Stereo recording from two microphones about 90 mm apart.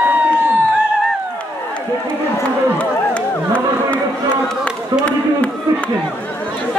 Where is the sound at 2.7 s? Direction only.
15° left (ahead or behind).